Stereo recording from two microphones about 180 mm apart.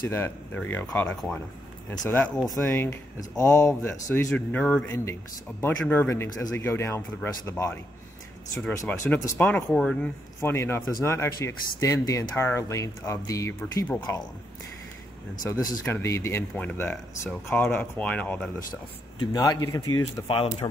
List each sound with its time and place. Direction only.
0.1 s speech: 10° left (ahead or behind)
2.7 s speech: 15° left (ahead or behind)
15.6 s speech: 15° left (ahead or behind)
19.3 s speech: 20° left (ahead or behind)